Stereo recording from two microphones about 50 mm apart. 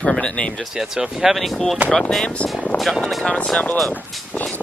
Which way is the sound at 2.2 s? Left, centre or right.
Left.